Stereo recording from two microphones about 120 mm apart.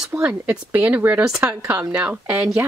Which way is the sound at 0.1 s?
15° right (ahead or behind).